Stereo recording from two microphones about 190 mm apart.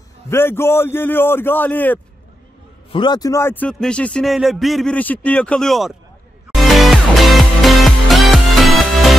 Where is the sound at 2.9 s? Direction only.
25° left (ahead or behind); by 5.9 s centre (ahead or behind).